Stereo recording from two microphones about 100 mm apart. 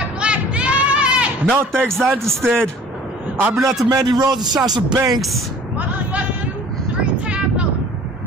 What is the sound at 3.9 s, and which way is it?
Speech, 40° right (ahead or behind).